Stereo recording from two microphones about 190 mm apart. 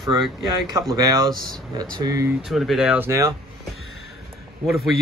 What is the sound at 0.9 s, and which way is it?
Speech, 20° right (ahead or behind).